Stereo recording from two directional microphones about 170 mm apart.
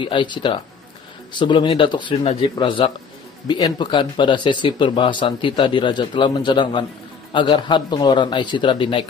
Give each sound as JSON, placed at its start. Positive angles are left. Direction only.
{"t": 0.0, "sound": "speech", "side_deg": 30}